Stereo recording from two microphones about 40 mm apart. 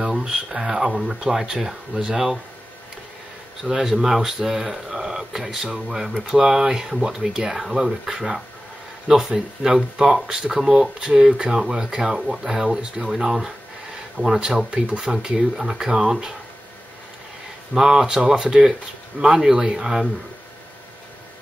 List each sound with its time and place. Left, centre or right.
0.0 s speech: centre
3.6 s speech: centre
14.7 s speech: right
15.3 s speech: centre
17.7 s speech: centre